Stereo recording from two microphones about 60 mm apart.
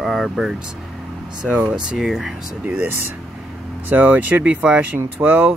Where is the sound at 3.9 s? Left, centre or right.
Right.